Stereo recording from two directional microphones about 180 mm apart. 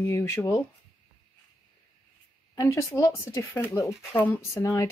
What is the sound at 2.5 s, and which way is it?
Speech, 15° left (ahead or behind).